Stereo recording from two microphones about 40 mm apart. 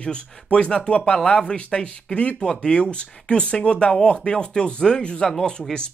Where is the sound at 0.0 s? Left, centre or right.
Left.